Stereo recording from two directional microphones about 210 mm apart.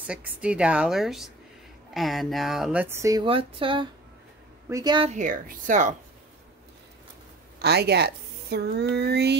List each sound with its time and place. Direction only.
0.0 s speech: 5° right (ahead or behind); by 5.1 s 20° right (ahead or behind)
5.1 s speech: 40° right (ahead or behind)
7.5 s a woman's voice: 50° right (ahead or behind)